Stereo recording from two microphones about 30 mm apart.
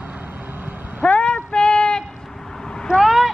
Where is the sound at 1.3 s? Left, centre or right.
Left.